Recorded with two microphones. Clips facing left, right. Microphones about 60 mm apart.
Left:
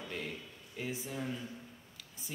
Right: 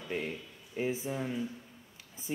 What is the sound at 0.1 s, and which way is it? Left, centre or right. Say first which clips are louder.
Speech: right 8 dB; right.